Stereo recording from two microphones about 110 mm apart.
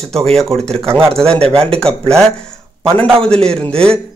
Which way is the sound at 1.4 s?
60° right (ahead or behind).